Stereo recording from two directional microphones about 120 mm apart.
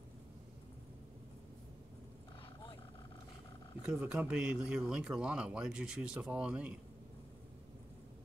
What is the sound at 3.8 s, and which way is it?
Speech, 5° right (ahead or behind).